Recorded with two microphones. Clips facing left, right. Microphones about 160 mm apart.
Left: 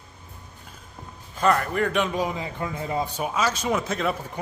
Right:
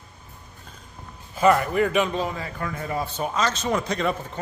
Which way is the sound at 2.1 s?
15° left (ahead or behind).